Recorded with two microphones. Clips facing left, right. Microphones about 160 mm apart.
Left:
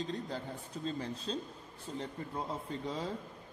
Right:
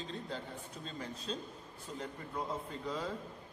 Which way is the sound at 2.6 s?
30° left (ahead or behind).